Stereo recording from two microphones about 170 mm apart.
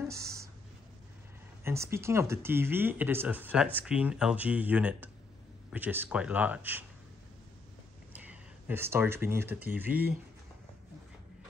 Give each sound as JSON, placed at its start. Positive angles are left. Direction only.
{"t": 0.0, "sound": "a sound", "side_deg": -15}
{"t": 1.6, "sound": "speech", "side_deg": -15}
{"t": 8.1, "sound": "speech", "side_deg": -10}